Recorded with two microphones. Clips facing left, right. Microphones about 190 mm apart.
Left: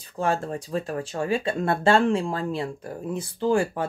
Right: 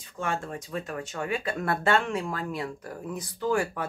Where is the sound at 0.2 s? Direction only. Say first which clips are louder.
Left 6 dB; 35° left (ahead or behind).